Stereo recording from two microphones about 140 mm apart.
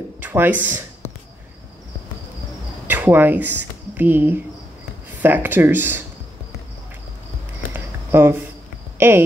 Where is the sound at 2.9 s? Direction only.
15° right (ahead or behind).